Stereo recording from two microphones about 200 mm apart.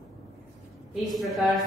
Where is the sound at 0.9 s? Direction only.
Centre (ahead or behind).